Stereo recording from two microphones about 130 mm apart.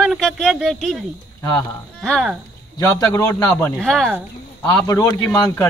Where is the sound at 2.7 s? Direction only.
20° left (ahead or behind).